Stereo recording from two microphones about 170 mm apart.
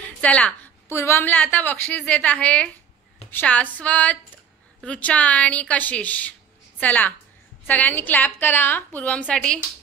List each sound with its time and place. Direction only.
0.2 s a woman's voice: 10° left (ahead or behind)